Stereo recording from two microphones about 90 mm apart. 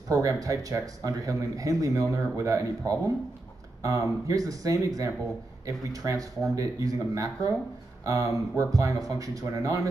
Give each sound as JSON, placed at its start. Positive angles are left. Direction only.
{"t": 0.1, "sound": "speech", "side_deg": -40}